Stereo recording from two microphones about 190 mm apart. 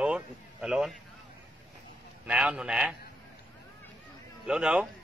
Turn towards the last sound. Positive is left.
turn(degrees=-5)  # may be behind; listen again after turning